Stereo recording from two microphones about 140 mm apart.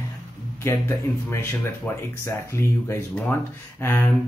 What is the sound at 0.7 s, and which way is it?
Speech, 20° left (ahead or behind).